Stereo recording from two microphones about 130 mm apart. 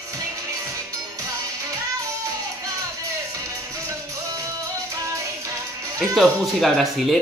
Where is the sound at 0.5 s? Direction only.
25° right (ahead or behind).